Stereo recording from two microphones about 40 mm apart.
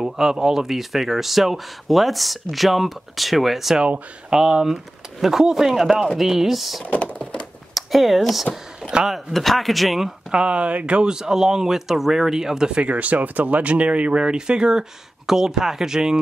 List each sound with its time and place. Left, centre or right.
0.0 s speech: centre
6.9 s a sound: left
7.7 s speech: centre
10.3 s speech: right
12.7 s speech: right; by 16.2 s centre